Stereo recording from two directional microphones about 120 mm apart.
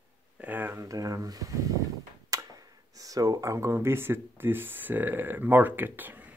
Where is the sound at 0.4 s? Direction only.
15° right (ahead or behind).